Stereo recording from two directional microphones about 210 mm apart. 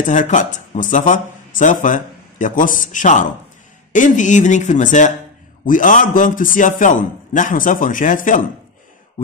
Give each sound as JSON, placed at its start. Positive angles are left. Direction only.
{"t": 0.0, "sound": "a man's voice", "side_deg": 35}